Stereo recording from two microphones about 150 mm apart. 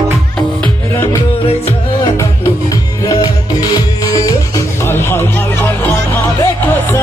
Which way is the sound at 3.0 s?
30° left (ahead or behind).